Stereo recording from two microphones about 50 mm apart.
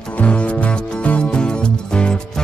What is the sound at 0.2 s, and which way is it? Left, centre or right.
Music, left.